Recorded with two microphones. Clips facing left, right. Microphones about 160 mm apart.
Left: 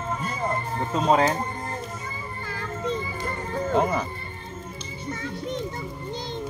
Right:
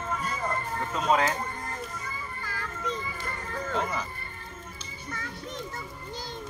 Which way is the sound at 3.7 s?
50° left (ahead or behind).